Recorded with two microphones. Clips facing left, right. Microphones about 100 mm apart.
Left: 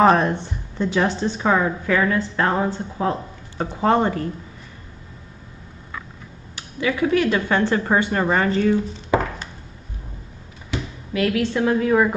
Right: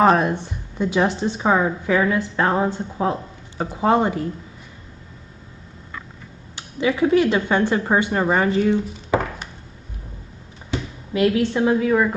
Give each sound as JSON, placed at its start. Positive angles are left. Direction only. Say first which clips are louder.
{"t": 0.0, "sound": "a woman's voice", "louder": "even", "side_deg": -5}
{"t": 6.5, "sound": "a woman's voice", "louder": "right 2 dB", "side_deg": -20}
{"t": 10.7, "sound": "a sound", "louder": "right 1 dB", "side_deg": -25}